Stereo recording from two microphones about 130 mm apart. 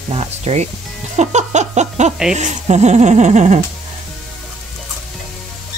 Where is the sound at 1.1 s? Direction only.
60° right (ahead or behind).